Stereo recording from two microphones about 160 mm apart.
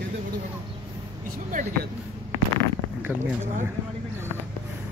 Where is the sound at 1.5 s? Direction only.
50° right (ahead or behind).